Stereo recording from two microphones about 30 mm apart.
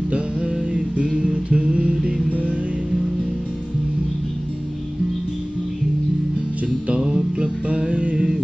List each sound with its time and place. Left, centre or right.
0.1 s music: right
7.0 s music: right